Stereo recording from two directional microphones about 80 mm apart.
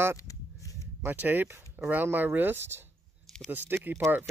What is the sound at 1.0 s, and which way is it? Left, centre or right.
Speech, right.